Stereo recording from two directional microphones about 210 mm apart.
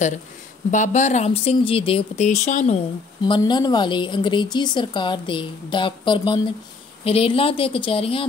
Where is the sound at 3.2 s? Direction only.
20° left (ahead or behind).